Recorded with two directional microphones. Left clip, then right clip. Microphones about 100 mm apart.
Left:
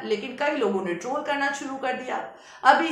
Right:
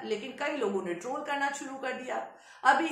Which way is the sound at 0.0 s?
25° left (ahead or behind).